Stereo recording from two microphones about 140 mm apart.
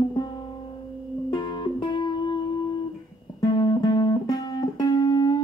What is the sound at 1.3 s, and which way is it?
Music, 30° left (ahead or behind).